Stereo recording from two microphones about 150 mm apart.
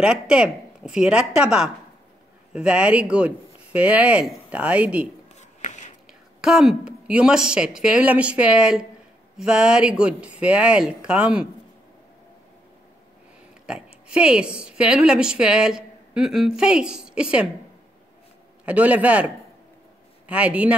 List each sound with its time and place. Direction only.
0.0 s a woman's voice: 5° right (ahead or behind)
5.4 s a sound: 50° left (ahead or behind)
6.4 s a woman's voice: 5° right (ahead or behind)
13.7 s speech: 5° right (ahead or behind)
18.7 s speech: 10° right (ahead or behind)